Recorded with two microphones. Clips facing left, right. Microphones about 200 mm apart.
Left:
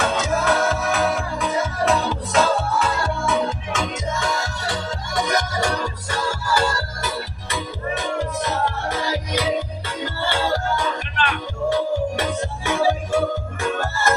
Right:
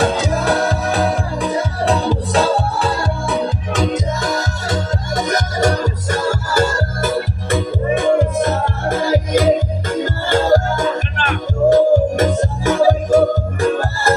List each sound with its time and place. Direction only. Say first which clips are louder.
0.0 s music: right 4 dB; 35° right (ahead or behind)